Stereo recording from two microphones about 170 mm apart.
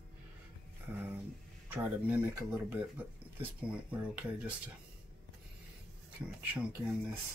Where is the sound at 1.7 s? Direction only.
10° right (ahead or behind).